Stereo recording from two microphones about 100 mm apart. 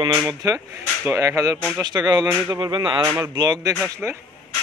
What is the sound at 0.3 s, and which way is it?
Speech, 35° right (ahead or behind).